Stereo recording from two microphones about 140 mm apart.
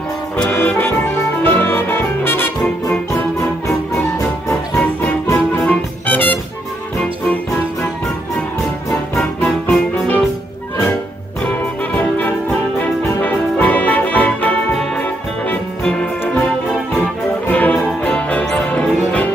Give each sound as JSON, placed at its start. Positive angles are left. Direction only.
{"t": 0.4, "sound": "music", "side_deg": 15}
{"t": 4.5, "sound": "music", "side_deg": 20}
{"t": 9.2, "sound": "music", "side_deg": 5}
{"t": 11.4, "sound": "music", "side_deg": 10}